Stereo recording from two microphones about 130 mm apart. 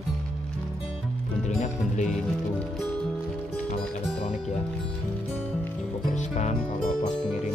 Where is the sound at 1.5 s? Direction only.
70° left (ahead or behind).